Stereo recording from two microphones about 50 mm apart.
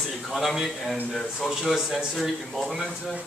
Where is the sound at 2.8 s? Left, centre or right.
Centre.